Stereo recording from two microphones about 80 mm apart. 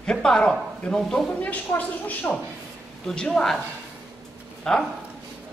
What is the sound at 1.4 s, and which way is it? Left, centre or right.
A woman's voice, centre.